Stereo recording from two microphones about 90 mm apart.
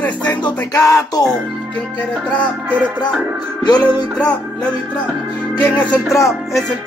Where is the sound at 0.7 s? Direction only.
40° left (ahead or behind).